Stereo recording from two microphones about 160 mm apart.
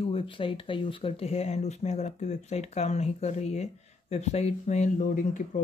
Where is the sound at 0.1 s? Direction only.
35° left (ahead or behind).